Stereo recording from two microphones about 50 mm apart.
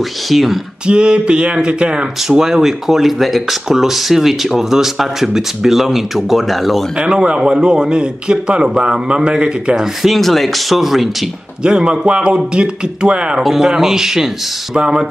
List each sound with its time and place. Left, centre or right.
0.3 s speech: centre
0.8 s a sound: centre
2.2 s speech: centre
7.0 s a man's voice: centre
10.0 s speech: centre
11.6 s a man's voice: centre
12.5 s a sound: centre
13.4 s a man's voice: centre